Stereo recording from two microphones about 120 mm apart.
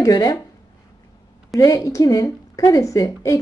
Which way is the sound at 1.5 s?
30° left (ahead or behind).